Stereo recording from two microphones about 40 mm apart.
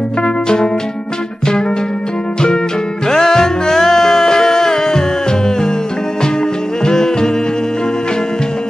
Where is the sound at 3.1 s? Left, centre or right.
Centre.